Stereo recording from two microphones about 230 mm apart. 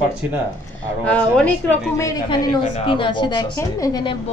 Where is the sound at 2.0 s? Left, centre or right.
Left.